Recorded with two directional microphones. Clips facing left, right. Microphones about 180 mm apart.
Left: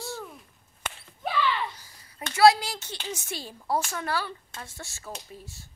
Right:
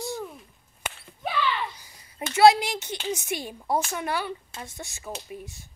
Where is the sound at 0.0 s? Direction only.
15° right (ahead or behind).